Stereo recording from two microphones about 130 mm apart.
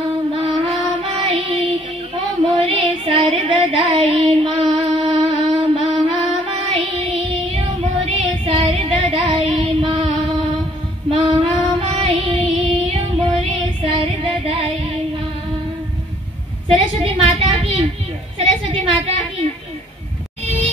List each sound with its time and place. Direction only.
0.4 s music: 55° right (ahead or behind)
8.5 s female singing: 45° right (ahead or behind)
11.1 s child singing: 40° right (ahead or behind)
16.6 s a sound: 50° right (ahead or behind)